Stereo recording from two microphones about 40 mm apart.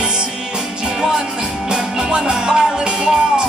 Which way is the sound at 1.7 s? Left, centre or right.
Centre.